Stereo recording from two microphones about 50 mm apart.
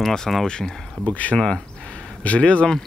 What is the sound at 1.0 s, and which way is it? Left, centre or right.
Speech, left.